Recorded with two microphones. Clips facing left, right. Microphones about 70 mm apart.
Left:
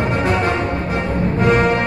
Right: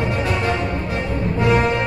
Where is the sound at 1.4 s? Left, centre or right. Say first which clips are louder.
Left 2 dB; left.